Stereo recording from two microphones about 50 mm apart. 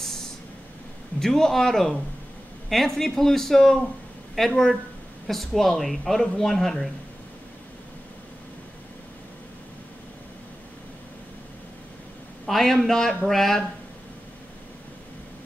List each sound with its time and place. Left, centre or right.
0.0 s a sound: centre
1.2 s speech: centre
12.4 s speech: centre